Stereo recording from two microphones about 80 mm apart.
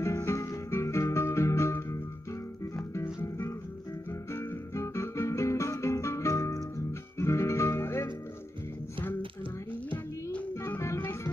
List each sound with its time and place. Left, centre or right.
0.0 s music: left
4.3 s guitar: left
7.2 s music: left